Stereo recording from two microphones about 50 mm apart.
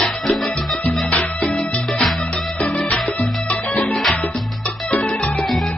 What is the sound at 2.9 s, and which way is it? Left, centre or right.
Music, left.